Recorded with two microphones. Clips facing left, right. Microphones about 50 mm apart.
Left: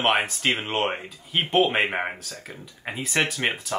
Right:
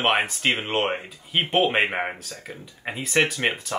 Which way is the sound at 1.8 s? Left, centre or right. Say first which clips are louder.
Even; centre.